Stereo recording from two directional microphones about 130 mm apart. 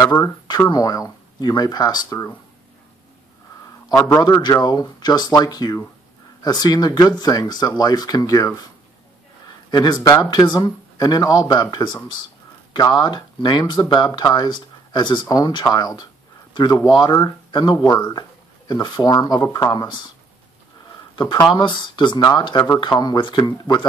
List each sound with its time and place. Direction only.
0.0 s speech: 30° left (ahead or behind)
4.1 s speech: 30° left (ahead or behind)
9.7 s speech: 35° left (ahead or behind)
17.7 s speech: 20° left (ahead or behind)
18.7 s speech: 30° left (ahead or behind)
21.2 s speech: 30° left (ahead or behind)